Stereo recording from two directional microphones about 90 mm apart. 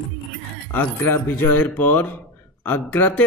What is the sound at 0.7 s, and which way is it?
Speech, 25° left (ahead or behind).